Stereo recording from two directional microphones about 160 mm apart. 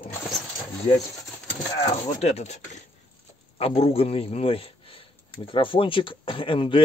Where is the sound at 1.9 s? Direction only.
40° left (ahead or behind).